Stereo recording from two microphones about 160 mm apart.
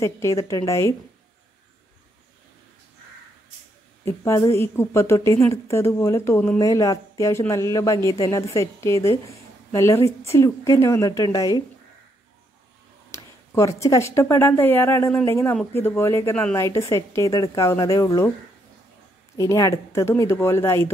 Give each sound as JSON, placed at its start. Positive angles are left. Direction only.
{"t": 0.0, "sound": "speech", "side_deg": 20}
{"t": 4.0, "sound": "a woman's voice", "side_deg": 15}
{"t": 13.1, "sound": "a woman's voice", "side_deg": 20}
{"t": 19.3, "sound": "a woman's voice", "side_deg": 20}